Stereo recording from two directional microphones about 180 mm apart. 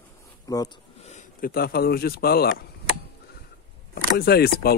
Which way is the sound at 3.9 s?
60° left (ahead or behind).